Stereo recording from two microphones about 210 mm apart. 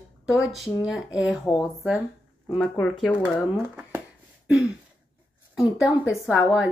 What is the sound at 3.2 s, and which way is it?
Speech, 5° right (ahead or behind).